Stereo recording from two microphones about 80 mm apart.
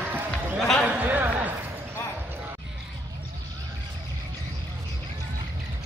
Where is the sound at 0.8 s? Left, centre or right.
Right.